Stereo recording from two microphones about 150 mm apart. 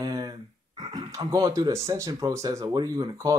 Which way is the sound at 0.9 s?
25° right (ahead or behind).